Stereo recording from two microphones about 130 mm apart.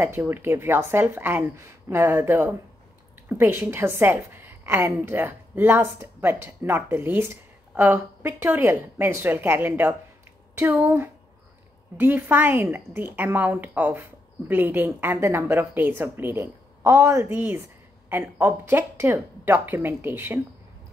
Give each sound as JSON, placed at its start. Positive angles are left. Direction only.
{"t": 0.0, "sound": "a woman's voice", "side_deg": -15}